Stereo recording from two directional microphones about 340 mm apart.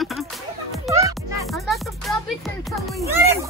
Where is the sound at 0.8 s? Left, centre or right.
Centre.